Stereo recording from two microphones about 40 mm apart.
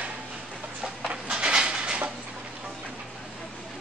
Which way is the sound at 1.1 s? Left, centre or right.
Right.